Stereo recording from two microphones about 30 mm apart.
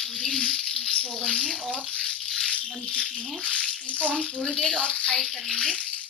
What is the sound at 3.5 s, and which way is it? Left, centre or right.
Bathtub, left.